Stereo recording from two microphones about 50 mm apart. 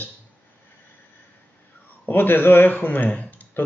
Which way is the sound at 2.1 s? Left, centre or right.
Left.